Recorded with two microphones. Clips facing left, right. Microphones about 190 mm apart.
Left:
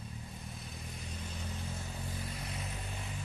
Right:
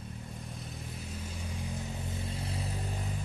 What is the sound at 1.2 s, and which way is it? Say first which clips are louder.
Vehicle: right 1 dB; 10° right (ahead or behind).